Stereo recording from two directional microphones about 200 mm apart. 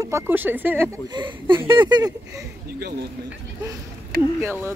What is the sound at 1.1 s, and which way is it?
Speech, 25° right (ahead or behind).